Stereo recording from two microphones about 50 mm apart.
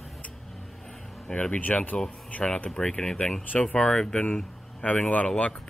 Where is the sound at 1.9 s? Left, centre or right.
Centre.